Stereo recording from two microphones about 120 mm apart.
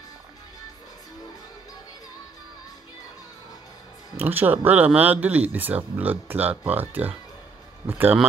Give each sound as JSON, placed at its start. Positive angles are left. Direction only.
{"t": 4.2, "sound": "speech", "side_deg": -15}